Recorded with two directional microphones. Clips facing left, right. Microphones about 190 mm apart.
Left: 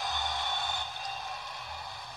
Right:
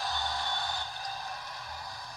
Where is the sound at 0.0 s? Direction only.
20° left (ahead or behind).